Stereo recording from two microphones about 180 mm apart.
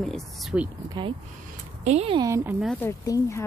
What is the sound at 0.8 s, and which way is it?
Speech, 25° right (ahead or behind).